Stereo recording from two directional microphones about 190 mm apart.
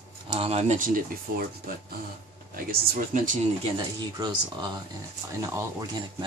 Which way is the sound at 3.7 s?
25° right (ahead or behind).